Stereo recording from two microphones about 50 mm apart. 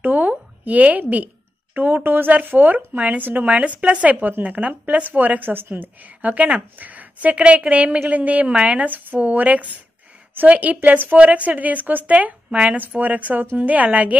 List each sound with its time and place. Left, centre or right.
0.0 s a sound: right
2.0 s a woman's voice: right
8.8 s a woman's voice: right
12.7 s a woman's voice: right